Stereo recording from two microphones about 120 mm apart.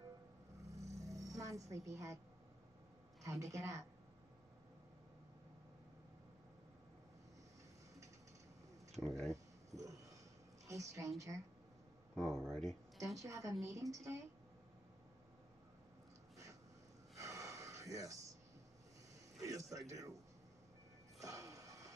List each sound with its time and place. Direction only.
0.7 s a sound: 70° right (ahead or behind)
1.0 s music: 30° right (ahead or behind)
3.3 s a woman's voice: 25° right (ahead or behind)
8.9 s speech: 5° left (ahead or behind)
9.8 s a sound: 30° right (ahead or behind)
10.7 s a woman's voice: 25° right (ahead or behind)
12.2 s speech: 5° left (ahead or behind)
13.0 s a woman's voice: 25° right (ahead or behind)
17.2 s gasp: 25° right (ahead or behind)
19.9 s a woman's voice: 25° right (ahead or behind)
21.2 s music: 25° right (ahead or behind)